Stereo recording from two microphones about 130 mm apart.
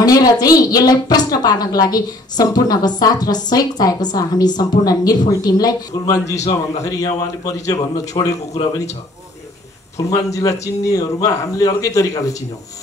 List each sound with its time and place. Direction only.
0.0 s speech: 30° left (ahead or behind)
9.9 s speech: 25° left (ahead or behind)